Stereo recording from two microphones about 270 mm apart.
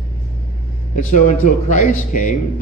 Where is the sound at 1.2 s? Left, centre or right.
Left.